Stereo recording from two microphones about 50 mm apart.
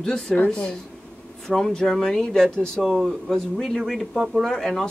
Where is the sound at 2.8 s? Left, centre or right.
Centre.